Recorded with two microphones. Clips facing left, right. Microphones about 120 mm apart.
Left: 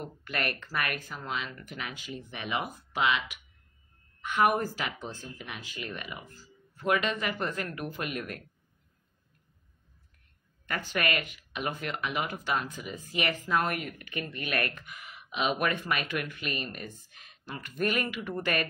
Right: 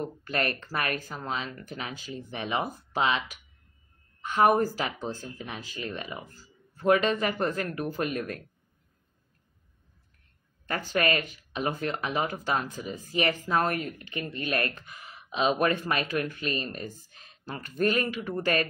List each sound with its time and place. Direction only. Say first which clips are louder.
0.0 s speech: right 4 dB; 35° right (ahead or behind)
10.7 s speech: right 4 dB; 35° right (ahead or behind)